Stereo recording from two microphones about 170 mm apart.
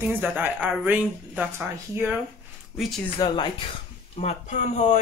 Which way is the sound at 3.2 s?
20° left (ahead or behind).